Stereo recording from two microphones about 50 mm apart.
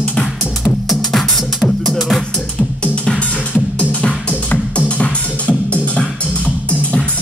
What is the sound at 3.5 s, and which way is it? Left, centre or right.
Music, left.